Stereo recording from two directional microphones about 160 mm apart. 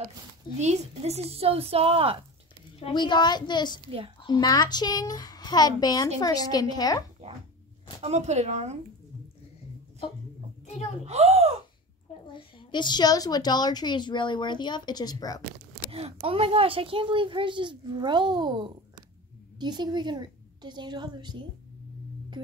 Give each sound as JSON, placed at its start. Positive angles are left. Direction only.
{"t": 0.6, "sound": "a child's voice", "side_deg": -45}
{"t": 2.8, "sound": "a child's voice", "side_deg": 30}
{"t": 8.0, "sound": "speech", "side_deg": -45}
{"t": 11.1, "sound": "speech", "side_deg": -40}
{"t": 12.3, "sound": "a child's voice", "side_deg": 30}
{"t": 15.9, "sound": "a child's voice", "side_deg": -35}